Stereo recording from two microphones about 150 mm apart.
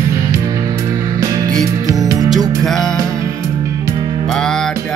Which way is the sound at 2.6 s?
5° left (ahead or behind).